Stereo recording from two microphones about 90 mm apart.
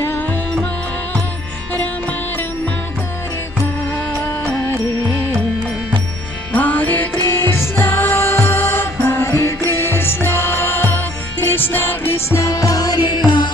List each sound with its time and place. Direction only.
6.5 s music: 20° left (ahead or behind); by 13.5 s 55° left (ahead or behind)